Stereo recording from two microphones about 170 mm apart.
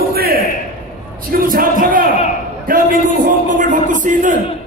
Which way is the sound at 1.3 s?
55° right (ahead or behind).